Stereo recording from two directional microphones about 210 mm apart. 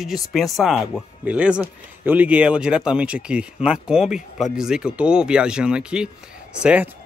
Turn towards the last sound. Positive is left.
turn(degrees=-5)  # may be behind; listen again after turning